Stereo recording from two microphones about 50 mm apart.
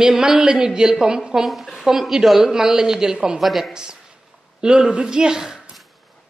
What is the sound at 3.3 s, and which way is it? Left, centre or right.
Speech, centre.